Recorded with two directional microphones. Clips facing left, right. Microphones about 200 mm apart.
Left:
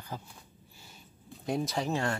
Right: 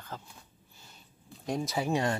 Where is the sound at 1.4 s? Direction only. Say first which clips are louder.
Even; centre (ahead or behind).